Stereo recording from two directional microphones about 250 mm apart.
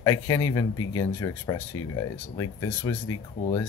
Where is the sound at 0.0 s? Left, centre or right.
Centre.